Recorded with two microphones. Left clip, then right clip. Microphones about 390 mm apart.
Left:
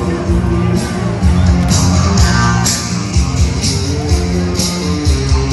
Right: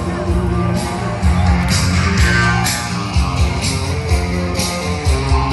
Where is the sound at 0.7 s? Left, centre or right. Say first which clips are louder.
Left 2 dB; centre.